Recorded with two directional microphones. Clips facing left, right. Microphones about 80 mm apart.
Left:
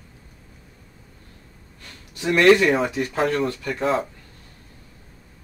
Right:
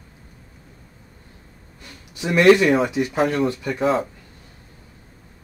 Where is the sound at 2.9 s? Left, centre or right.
Centre.